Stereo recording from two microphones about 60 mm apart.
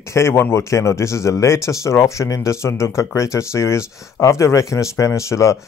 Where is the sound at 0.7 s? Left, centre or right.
Left.